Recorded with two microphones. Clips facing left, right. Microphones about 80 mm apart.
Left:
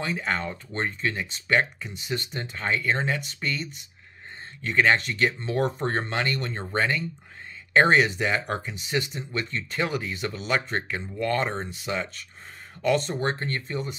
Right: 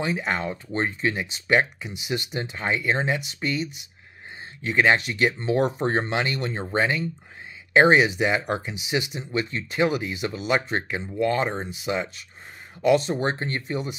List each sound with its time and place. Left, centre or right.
0.0 s speech: centre